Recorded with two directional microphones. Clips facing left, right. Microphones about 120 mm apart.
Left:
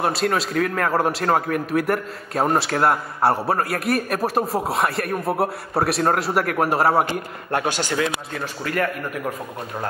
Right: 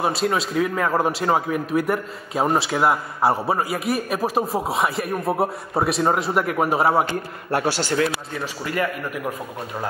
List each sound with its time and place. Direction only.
0.0 s a man's voice: centre (ahead or behind)
7.5 s speech: 20° left (ahead or behind)
8.6 s a man's voice: 5° right (ahead or behind)